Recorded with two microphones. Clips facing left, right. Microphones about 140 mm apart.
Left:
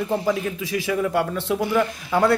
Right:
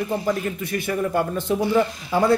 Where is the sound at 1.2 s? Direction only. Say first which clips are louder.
Even; 75° left (ahead or behind).